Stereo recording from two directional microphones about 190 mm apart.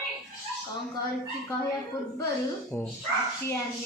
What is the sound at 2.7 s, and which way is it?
Speech, 10° left (ahead or behind).